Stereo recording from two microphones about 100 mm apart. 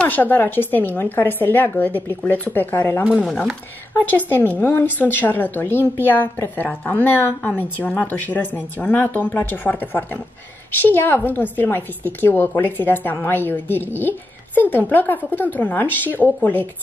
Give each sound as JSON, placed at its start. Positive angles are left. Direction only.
{"t": 0.0, "sound": "a woman's voice", "side_deg": 20}